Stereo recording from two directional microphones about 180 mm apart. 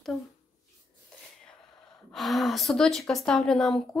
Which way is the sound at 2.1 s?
Centre (ahead or behind).